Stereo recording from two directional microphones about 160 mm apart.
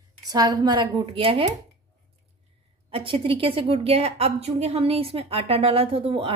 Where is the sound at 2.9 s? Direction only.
35° right (ahead or behind).